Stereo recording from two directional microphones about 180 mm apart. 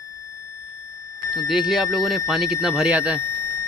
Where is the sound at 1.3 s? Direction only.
Centre (ahead or behind).